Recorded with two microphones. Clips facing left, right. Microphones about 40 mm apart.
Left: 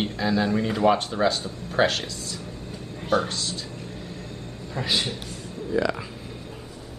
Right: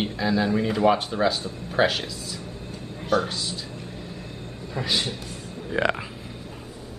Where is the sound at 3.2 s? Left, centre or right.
Centre.